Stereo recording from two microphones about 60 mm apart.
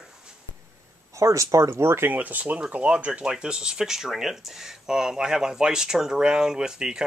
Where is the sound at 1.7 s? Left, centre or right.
Right.